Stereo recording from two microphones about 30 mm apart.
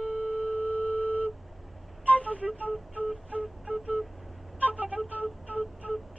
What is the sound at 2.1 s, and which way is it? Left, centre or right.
Music, left.